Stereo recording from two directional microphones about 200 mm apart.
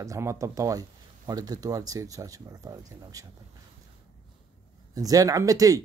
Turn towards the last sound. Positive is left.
turn(degrees=-15)  # may be behind; listen again after turning